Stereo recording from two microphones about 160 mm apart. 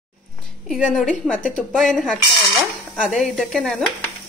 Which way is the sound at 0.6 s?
Centre (ahead or behind).